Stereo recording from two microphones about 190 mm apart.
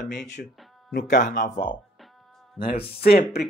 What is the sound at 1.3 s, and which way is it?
Speech, 45° left (ahead or behind).